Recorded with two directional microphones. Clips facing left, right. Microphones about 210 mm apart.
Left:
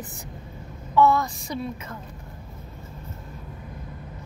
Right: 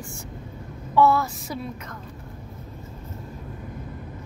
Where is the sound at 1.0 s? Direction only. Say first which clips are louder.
Even; 10° right (ahead or behind).